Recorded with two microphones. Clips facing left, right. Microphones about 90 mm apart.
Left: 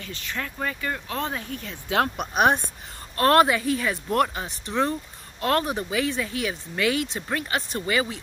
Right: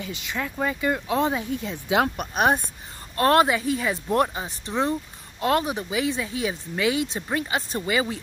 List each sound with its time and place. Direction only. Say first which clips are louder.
0.0 s speech: right 3 dB; 15° right (ahead or behind)
2.1 s speech: left 1 dB; centre (ahead or behind)
3.2 s speech: even; 15° right (ahead or behind)